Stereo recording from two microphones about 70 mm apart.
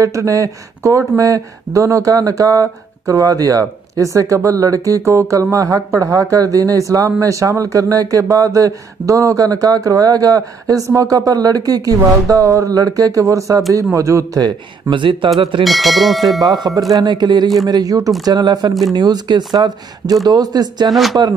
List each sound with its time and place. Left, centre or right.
0.0 s speech: right
15.3 s speech: centre
16.4 s speech: right
16.9 s speech: right
17.6 s speech: right
18.2 s speech: right
20.2 s speech: right
20.9 s speech: centre